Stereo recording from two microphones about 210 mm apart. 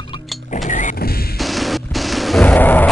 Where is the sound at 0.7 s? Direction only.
35° left (ahead or behind).